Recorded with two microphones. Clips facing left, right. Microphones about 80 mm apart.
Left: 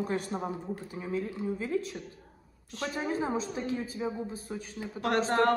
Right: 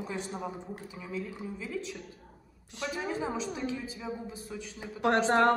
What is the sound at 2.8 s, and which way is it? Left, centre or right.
A woman's voice, left.